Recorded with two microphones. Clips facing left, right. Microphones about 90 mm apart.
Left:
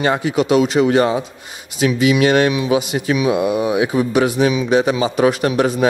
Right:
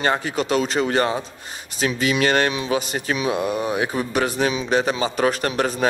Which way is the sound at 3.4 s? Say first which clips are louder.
Left 6 dB; 10° left (ahead or behind).